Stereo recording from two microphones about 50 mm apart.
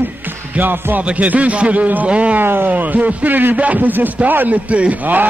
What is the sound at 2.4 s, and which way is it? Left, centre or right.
Speech, right.